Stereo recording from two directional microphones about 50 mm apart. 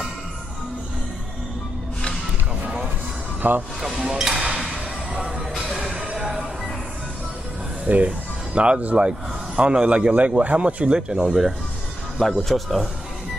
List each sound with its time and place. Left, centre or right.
3.4 s speech: right
3.8 s a sound: centre
5.7 s music: centre
5.9 s a sound: centre
7.8 s a man's voice: right; by 11.5 s centre
12.2 s speech: centre